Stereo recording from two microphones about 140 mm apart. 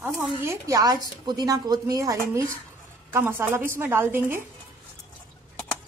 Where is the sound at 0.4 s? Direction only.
20° right (ahead or behind).